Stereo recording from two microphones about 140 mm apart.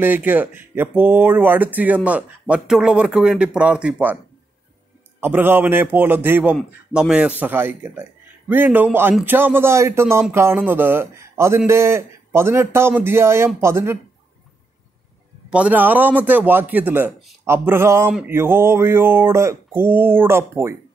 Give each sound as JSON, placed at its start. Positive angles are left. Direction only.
{"t": 0.0, "sound": "a man's voice", "side_deg": -15}
{"t": 5.2, "sound": "a man's voice", "side_deg": -15}
{"t": 15.5, "sound": "a man's voice", "side_deg": -10}